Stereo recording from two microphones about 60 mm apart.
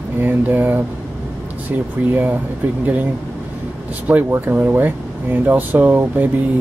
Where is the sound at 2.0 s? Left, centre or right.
Right.